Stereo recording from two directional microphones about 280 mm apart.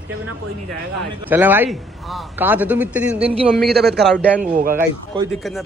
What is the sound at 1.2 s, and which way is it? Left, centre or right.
A man's voice, centre.